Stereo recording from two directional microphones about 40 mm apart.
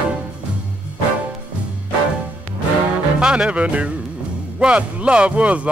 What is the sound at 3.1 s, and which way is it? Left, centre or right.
Speech, right.